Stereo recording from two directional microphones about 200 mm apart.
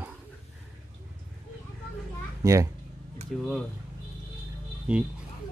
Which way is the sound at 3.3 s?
Centre (ahead or behind).